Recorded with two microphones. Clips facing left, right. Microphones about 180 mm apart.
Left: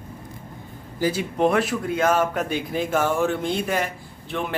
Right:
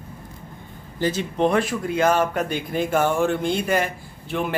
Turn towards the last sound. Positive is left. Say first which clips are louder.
# right 2 dB
turn(degrees=0)  # may be behind; listen again after turning